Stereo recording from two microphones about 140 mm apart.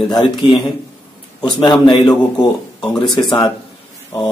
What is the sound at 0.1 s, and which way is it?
A man's voice, 30° left (ahead or behind).